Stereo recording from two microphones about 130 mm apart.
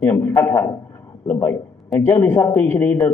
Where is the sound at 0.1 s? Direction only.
20° left (ahead or behind).